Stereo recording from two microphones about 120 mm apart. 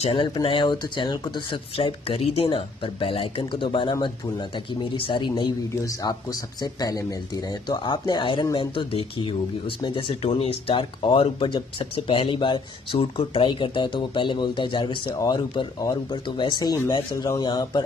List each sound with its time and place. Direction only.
0.0 s a man's voice: 45° left (ahead or behind)
16.7 s speech: 20° left (ahead or behind)
17.1 s a man's voice: 30° left (ahead or behind)